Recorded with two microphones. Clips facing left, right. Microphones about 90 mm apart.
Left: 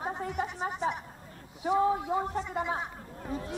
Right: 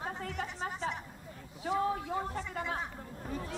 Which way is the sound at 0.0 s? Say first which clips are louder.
Left 5 dB; 20° left (ahead or behind).